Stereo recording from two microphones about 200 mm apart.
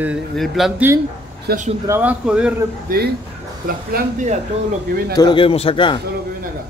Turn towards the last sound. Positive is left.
turn(degrees=25)  # may be behind; listen again after turning